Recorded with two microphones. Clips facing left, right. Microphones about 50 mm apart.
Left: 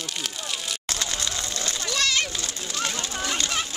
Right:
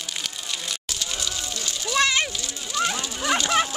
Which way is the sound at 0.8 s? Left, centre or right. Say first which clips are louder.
Left 2 dB; left.